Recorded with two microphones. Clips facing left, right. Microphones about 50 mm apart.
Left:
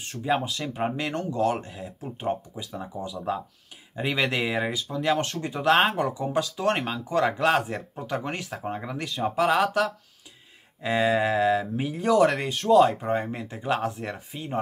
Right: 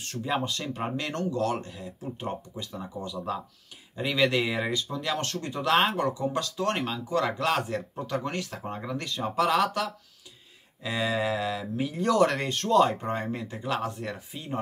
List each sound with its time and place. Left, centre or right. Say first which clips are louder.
0.0 s speech: even; centre
0.3 s speech: left 4 dB; centre